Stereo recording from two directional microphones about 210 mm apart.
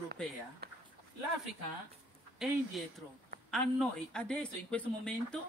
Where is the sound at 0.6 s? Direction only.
50° right (ahead or behind).